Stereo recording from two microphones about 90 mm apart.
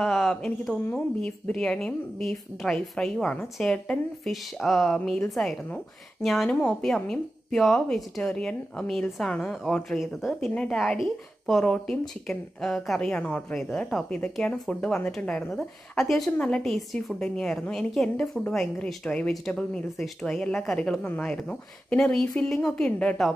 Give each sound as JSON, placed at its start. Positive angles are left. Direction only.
{"t": 0.0, "sound": "a woman's voice", "side_deg": 0}
{"t": 6.5, "sound": "a woman's voice", "side_deg": 15}
{"t": 6.8, "sound": "a woman's voice", "side_deg": 5}
{"t": 10.5, "sound": "a woman's voice", "side_deg": 10}
{"t": 16.0, "sound": "a woman's voice", "side_deg": 5}
{"t": 16.3, "sound": "a woman's voice", "side_deg": 15}
{"t": 21.0, "sound": "speech", "side_deg": 20}
{"t": 21.3, "sound": "a woman's voice", "side_deg": 10}